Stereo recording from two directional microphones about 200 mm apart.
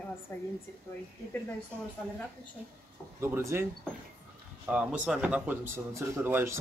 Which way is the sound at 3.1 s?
10° right (ahead or behind).